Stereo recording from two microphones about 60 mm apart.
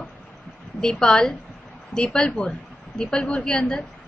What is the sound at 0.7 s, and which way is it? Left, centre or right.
A woman's voice, centre.